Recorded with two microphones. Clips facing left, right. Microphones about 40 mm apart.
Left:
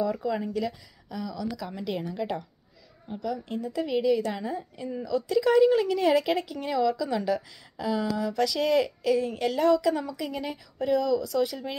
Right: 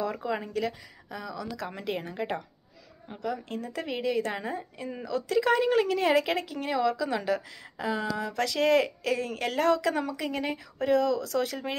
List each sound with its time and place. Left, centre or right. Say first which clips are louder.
0.0 s a woman's voice: left 4 dB; right
1.1 s a woman's voice: left 2 dB; right
1.4 s speech: left 3 dB; right
1.9 s a woman's voice: left 1 dB; right
9.2 s speech: left 2 dB; right